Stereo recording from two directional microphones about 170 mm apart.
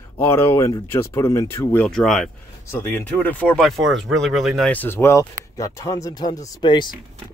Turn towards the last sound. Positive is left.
turn(degrees=25)  # may be behind; listen again after turning